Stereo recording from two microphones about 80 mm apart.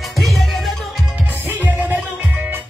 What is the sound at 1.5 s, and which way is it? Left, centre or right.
Music, right.